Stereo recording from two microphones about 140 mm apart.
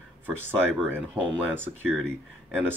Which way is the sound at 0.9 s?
10° right (ahead or behind).